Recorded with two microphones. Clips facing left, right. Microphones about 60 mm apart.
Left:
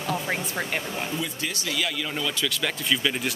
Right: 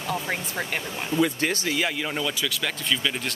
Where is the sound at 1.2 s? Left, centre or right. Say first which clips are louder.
Right 8 dB; right.